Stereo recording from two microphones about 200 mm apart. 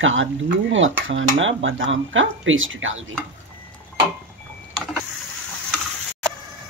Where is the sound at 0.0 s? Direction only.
75° right (ahead or behind).